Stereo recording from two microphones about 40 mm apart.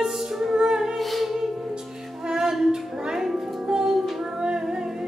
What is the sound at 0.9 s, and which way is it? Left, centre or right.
Music, centre.